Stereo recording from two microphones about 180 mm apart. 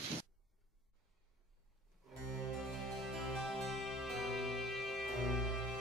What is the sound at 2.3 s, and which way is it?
Music, centre (ahead or behind).